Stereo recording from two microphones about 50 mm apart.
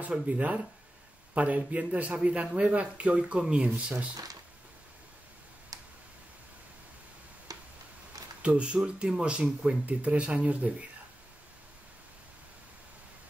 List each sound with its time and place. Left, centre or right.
0.1 s speech: right
8.4 s speech: right